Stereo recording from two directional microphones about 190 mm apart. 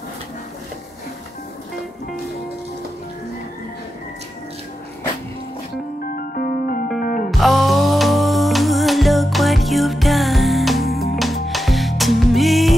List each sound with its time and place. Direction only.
6.1 s music: 50° left (ahead or behind)
7.2 s music: centre (ahead or behind)